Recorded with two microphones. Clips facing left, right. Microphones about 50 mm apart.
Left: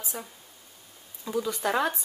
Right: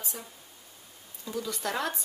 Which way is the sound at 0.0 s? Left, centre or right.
Centre.